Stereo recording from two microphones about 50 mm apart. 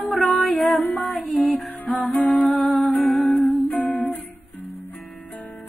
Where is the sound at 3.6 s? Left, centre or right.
Left.